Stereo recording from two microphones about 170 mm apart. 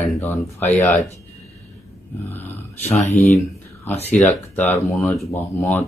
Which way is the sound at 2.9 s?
45° left (ahead or behind).